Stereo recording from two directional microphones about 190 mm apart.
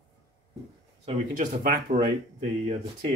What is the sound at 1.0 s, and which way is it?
Speech, 45° right (ahead or behind).